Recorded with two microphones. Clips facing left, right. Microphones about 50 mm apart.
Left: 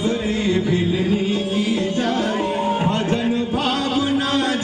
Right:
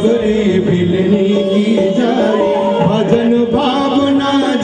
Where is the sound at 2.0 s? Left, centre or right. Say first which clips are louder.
Right 9 dB; right.